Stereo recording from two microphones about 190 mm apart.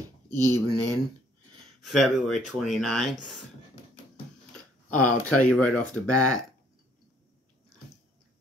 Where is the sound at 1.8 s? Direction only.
Centre (ahead or behind).